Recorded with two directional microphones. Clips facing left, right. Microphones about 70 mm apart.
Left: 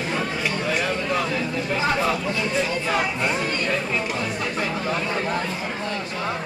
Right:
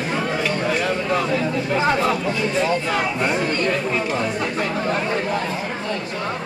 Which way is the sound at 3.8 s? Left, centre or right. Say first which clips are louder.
Right 4 dB; centre.